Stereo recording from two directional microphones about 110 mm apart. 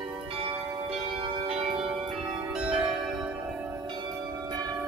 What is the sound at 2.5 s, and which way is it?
Church bell, 5° right (ahead or behind).